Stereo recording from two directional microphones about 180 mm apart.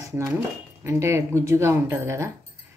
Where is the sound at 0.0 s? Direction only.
15° right (ahead or behind).